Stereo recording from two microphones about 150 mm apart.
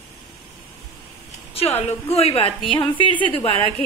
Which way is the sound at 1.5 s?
45° left (ahead or behind).